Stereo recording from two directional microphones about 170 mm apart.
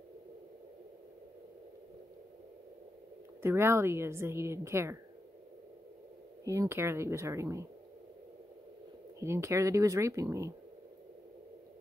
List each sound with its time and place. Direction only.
3.4 s a woman's voice: 15° right (ahead or behind)
6.4 s a woman's voice: 20° right (ahead or behind)
9.2 s a woman's voice: 15° right (ahead or behind)